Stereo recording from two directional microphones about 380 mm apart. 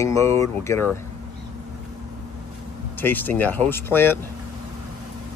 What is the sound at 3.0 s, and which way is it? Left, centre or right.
Speech, centre.